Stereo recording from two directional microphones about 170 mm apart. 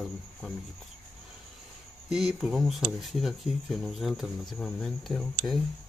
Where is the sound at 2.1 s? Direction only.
5° right (ahead or behind).